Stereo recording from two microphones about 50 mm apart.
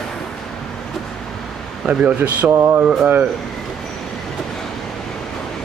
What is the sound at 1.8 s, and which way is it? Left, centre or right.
Speech, right.